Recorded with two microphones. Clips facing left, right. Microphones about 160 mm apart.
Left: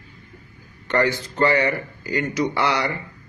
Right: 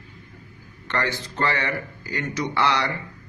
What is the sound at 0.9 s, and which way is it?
Speech, 15° left (ahead or behind).